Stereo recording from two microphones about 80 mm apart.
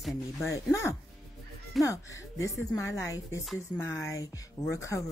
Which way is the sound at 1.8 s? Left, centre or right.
Left.